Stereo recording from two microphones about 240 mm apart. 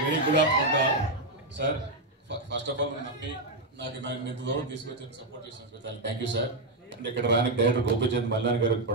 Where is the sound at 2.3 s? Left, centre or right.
Right.